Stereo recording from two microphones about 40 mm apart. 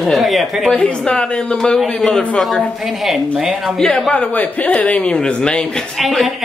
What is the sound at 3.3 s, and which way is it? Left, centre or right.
Speech, centre.